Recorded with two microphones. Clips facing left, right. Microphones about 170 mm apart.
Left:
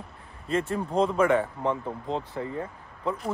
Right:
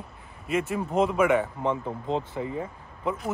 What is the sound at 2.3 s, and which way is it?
Speech, 15° right (ahead or behind).